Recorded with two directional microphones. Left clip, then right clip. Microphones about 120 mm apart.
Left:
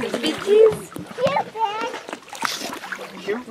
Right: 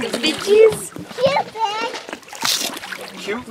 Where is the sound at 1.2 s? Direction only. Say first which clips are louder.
Right 3 dB; 40° right (ahead or behind).